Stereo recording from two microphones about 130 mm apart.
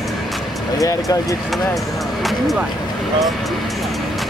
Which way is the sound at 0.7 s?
25° left (ahead or behind).